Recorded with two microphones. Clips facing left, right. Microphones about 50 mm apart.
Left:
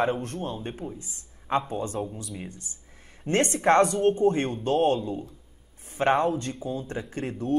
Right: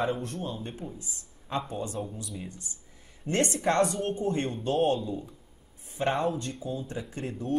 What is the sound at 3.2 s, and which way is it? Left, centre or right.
Speech, left.